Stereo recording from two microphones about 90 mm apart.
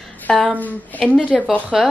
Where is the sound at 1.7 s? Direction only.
Centre (ahead or behind).